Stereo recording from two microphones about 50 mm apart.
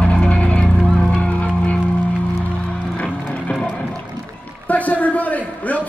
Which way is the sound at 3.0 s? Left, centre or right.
Left.